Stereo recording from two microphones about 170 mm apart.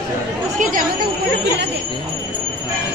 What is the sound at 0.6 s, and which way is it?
Chatter, 55° right (ahead or behind).